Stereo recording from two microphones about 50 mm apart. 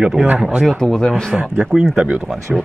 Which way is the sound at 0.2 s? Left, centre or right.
Centre.